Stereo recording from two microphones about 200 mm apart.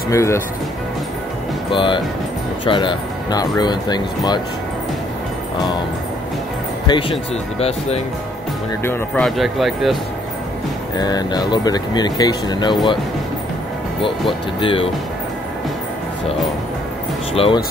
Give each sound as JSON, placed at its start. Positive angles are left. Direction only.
{"t": 0.1, "sound": "speech", "side_deg": 15}
{"t": 1.7, "sound": "speech", "side_deg": 25}
{"t": 6.9, "sound": "speech", "side_deg": 25}
{"t": 8.8, "sound": "speech", "side_deg": 5}
{"t": 11.0, "sound": "speech", "side_deg": 20}
{"t": 14.6, "sound": "speech", "side_deg": 25}
{"t": 17.3, "sound": "speech", "side_deg": 30}